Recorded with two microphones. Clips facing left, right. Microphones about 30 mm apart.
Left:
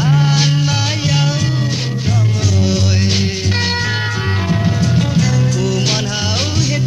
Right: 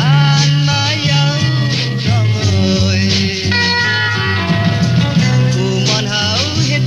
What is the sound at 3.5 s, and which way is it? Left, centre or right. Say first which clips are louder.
Music: right 7 dB; right.